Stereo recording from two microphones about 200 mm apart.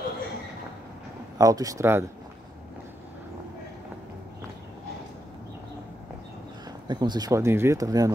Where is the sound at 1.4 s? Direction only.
15° right (ahead or behind).